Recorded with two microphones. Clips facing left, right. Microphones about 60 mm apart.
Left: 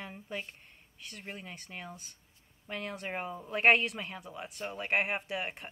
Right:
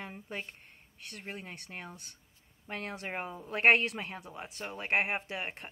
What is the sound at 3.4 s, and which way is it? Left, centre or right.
Speech, right.